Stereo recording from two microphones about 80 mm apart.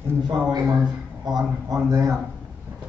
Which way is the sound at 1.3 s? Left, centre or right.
Right.